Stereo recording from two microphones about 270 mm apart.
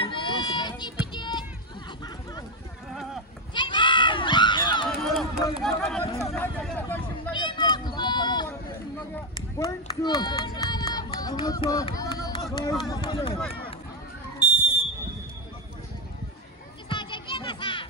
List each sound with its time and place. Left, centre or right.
0.0 s music: centre
3.5 s children playing: centre
4.8 s run: centre
6.0 s hubbub: centre
7.3 s a sound: centre
9.1 s run: centre
16.9 s music: centre